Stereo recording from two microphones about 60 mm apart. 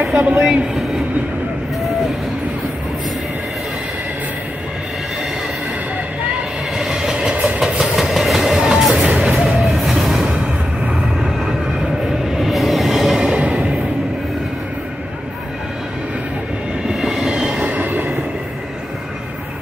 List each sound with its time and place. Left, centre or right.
0.2 s a woman's voice: centre
6.8 s train: centre
7.3 s train: right
7.8 s train: centre
8.9 s music: right
9.2 s music: centre
12.3 s train: centre
16.8 s train: centre
17.6 s train: right